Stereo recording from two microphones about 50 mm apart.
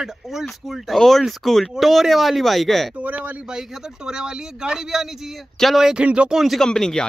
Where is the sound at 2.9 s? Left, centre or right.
Right.